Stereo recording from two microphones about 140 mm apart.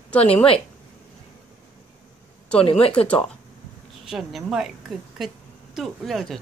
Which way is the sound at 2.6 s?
45° left (ahead or behind).